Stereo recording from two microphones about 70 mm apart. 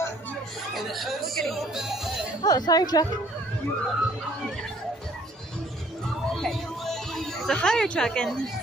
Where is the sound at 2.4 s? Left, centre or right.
Left.